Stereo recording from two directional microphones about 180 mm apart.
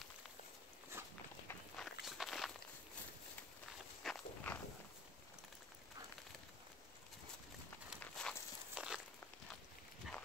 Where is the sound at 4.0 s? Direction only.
5° left (ahead or behind).